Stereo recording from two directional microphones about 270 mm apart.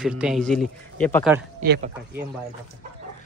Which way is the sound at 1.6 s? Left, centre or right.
Right.